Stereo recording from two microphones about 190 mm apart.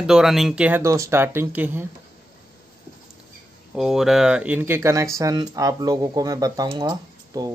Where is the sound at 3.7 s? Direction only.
Centre (ahead or behind); by 7.5 s 20° right (ahead or behind).